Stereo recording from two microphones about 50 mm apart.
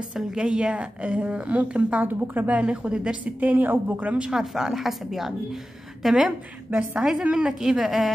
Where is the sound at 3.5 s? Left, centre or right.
Right.